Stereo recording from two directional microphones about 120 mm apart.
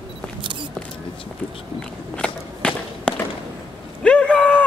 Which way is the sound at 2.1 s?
10° left (ahead or behind).